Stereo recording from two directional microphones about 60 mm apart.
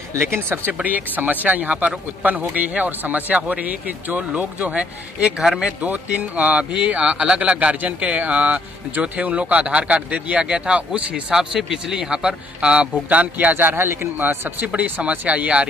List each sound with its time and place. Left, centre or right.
0.2 s speech: right
5.4 s speech: centre
5.8 s speech: right
14.7 s speech: right